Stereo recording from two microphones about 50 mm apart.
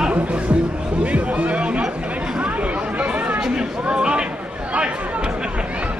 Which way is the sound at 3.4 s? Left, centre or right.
Centre.